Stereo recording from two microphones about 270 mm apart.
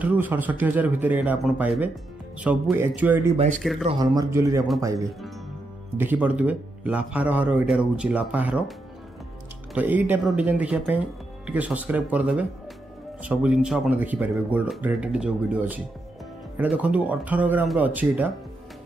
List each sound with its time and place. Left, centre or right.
0.0 s a man's voice: centre
3.3 s speech: right
3.8 s speech: centre
5.9 s a man's voice: centre
9.8 s a man's voice: centre